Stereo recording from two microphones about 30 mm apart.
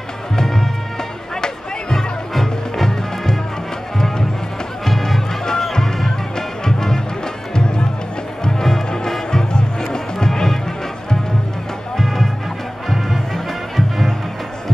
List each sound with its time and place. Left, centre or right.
0.4 s music: centre
4.8 s music: centre; by 7.8 s left
8.5 s music: centre
13.3 s music: centre